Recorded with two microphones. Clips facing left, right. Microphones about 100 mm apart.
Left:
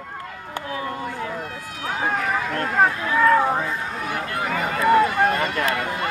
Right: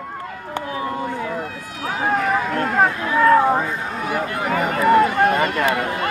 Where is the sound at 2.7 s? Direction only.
5° right (ahead or behind).